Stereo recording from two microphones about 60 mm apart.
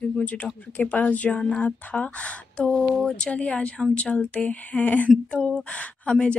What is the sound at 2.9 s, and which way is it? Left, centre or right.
Speech, centre.